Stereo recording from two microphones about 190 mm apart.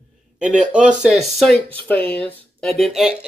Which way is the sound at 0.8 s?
40° right (ahead or behind).